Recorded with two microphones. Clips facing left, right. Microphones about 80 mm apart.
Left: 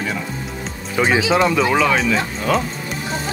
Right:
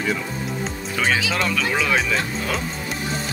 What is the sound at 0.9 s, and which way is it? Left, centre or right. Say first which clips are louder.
Speech: left 5 dB; centre.